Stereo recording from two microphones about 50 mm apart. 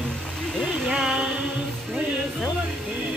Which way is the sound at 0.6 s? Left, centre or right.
Centre.